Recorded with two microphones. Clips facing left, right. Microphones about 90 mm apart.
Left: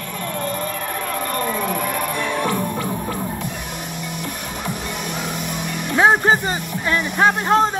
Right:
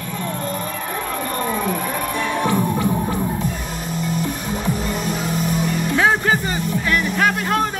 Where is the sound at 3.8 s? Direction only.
35° right (ahead or behind).